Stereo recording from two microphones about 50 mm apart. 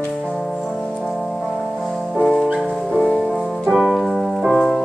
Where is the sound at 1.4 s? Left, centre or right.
Centre.